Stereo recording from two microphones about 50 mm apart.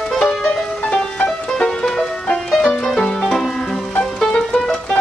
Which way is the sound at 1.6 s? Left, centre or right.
Centre.